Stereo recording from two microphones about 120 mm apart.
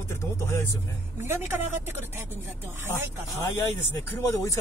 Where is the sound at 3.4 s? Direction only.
25° left (ahead or behind).